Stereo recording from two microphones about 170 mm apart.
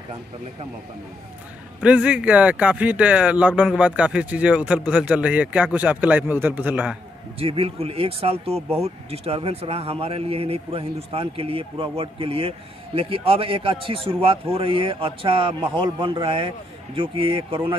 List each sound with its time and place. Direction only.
1.8 s speech: 5° right (ahead or behind)
7.3 s speech: 35° right (ahead or behind)